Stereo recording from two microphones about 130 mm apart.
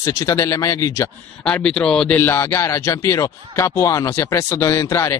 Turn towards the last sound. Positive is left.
turn(degrees=20)  # may be behind; listen again after turning